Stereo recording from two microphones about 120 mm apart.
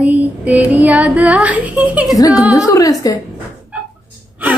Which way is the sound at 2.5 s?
30° left (ahead or behind).